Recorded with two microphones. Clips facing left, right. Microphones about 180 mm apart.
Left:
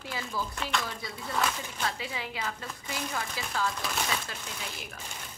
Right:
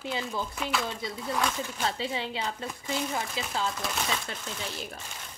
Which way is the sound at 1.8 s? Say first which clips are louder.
Right 5 dB; 25° right (ahead or behind).